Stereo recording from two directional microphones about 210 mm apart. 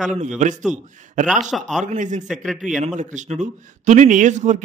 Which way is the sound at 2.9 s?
35° right (ahead or behind).